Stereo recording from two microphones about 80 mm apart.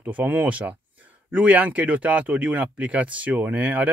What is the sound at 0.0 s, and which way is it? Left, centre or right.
Speech, right.